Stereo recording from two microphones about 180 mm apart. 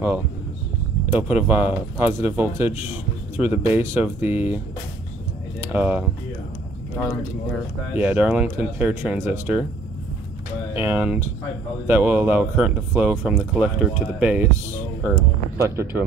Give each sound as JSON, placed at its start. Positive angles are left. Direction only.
{"t": 1.1, "sound": "speech", "side_deg": -10}
{"t": 5.7, "sound": "speech", "side_deg": -10}
{"t": 7.9, "sound": "speech", "side_deg": -10}
{"t": 10.7, "sound": "speech", "side_deg": -10}